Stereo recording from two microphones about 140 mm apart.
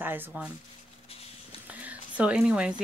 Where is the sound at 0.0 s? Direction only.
15° right (ahead or behind).